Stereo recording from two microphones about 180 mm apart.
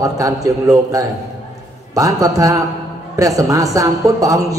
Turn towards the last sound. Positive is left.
turn(degrees=-20)  # may be behind; listen again after turning